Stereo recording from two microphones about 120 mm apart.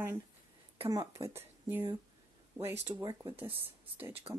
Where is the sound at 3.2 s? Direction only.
20° right (ahead or behind).